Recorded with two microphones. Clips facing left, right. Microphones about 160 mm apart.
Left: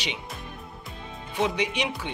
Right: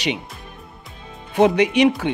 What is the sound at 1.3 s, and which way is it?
Speech, 65° right (ahead or behind).